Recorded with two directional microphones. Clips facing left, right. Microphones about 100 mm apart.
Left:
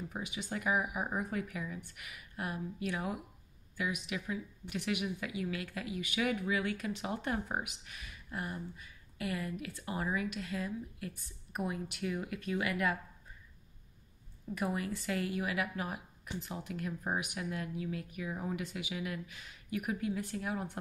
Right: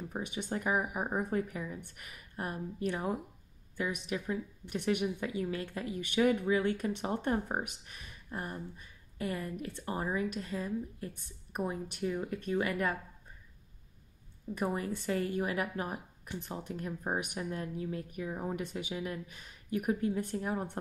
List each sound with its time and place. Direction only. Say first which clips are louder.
0.1 s speech: right 3 dB; 40° right (ahead or behind)
14.6 s speech: right 2 dB; 35° right (ahead or behind)